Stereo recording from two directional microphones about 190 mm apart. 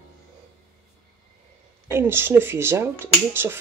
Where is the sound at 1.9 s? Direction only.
10° right (ahead or behind).